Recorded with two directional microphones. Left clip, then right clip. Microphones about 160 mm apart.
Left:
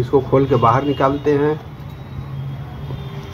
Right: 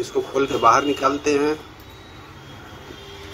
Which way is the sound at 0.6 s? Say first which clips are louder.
Left 1 dB; 35° right (ahead or behind).